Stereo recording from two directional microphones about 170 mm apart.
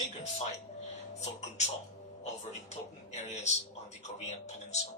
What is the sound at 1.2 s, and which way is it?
Speech, 40° left (ahead or behind).